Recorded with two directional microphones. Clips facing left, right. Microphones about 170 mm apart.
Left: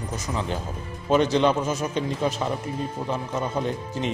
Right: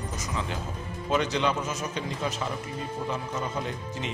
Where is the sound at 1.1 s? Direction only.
30° left (ahead or behind).